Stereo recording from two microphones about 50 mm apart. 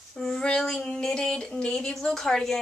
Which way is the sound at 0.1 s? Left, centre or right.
Centre.